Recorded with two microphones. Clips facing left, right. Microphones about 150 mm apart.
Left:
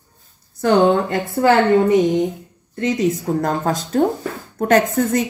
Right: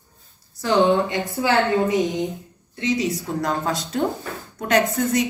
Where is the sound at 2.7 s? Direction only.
45° left (ahead or behind).